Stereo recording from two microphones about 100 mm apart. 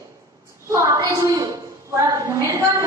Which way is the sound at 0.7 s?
30° right (ahead or behind).